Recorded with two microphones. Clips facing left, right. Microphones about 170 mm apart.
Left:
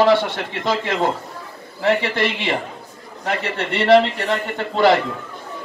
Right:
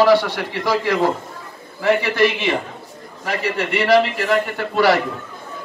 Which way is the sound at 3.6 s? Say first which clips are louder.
Left 2 dB; 25° left (ahead or behind).